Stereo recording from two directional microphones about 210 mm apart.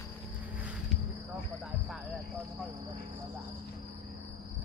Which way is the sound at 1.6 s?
Centre (ahead or behind).